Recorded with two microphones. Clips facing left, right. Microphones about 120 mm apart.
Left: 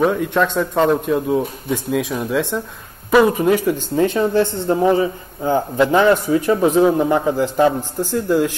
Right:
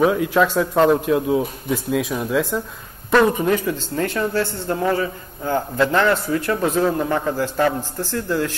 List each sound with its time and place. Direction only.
0.0 s speech: centre (ahead or behind); by 8.5 s 15° left (ahead or behind)